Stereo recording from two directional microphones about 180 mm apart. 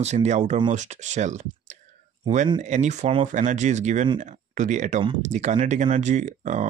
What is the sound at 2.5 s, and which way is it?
Speech, 40° right (ahead or behind).